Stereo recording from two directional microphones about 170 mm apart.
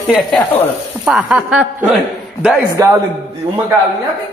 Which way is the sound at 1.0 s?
5° right (ahead or behind).